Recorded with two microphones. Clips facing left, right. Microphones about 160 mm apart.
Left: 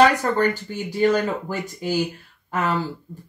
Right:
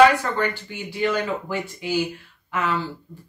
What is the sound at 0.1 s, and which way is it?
Speech, 40° left (ahead or behind).